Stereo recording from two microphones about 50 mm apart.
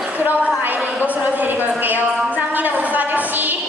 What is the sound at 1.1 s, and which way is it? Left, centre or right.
Speech, right.